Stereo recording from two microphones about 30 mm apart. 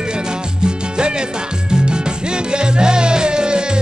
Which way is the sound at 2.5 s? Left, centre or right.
Right.